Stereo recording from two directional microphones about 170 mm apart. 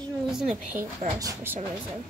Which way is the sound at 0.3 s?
5° right (ahead or behind).